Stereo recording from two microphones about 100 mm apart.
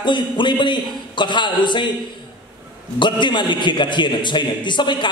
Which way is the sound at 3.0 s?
50° left (ahead or behind).